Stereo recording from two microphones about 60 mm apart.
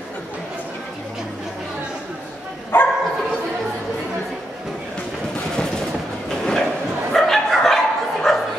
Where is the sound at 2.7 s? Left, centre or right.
Left.